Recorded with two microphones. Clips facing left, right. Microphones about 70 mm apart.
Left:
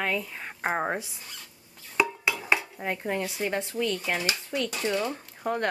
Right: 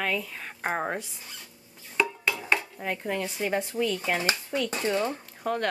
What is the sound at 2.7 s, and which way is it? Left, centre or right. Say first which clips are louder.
Speech: left 1 dB; centre.